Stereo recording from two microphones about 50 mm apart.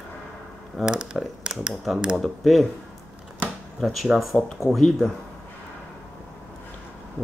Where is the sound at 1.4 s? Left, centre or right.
Centre.